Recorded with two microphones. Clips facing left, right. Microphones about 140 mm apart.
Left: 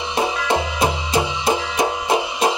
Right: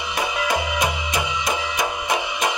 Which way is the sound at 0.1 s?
30° left (ahead or behind).